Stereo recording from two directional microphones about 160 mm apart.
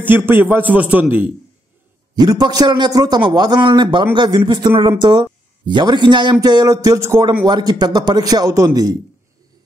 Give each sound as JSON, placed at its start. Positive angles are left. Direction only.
{"t": 0.0, "sound": "a man's voice", "side_deg": -15}
{"t": 2.1, "sound": "a man's voice", "side_deg": -25}